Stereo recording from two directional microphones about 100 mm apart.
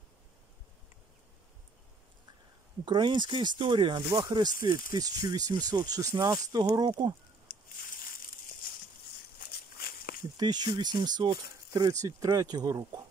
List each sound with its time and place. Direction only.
2.8 s speech: 50° right (ahead or behind)
10.3 s speech: 45° right (ahead or behind)